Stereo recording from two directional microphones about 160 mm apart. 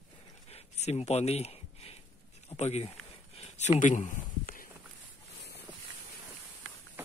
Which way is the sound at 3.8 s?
50° left (ahead or behind).